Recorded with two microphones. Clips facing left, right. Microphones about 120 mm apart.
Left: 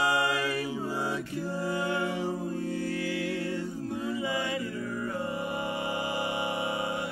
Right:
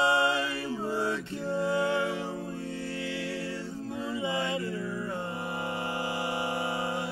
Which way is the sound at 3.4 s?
20° left (ahead or behind).